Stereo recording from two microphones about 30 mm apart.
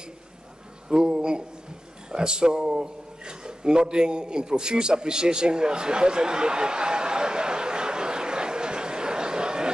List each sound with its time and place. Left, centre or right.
0.8 s speech: right